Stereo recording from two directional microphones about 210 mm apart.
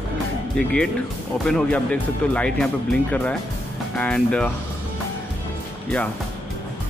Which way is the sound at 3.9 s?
5° left (ahead or behind).